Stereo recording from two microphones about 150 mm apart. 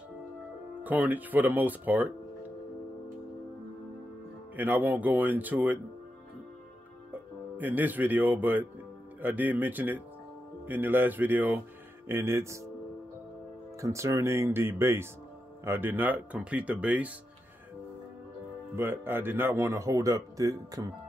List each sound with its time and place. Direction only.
0.8 s speech: 10° right (ahead or behind)
4.6 s speech: 10° right (ahead or behind)
7.1 s speech: 10° right (ahead or behind)
13.7 s speech: 20° right (ahead or behind)
18.8 s speech: 15° right (ahead or behind)